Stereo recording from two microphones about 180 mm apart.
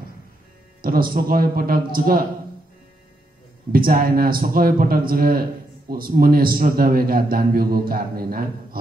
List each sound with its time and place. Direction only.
0.8 s a man's voice: 55° right (ahead or behind)
3.7 s a man's voice: 55° right (ahead or behind)